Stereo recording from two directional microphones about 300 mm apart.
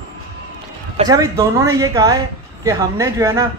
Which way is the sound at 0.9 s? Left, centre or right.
Centre.